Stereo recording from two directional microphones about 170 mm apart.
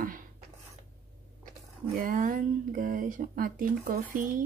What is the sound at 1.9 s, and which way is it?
Speech, 55° right (ahead or behind).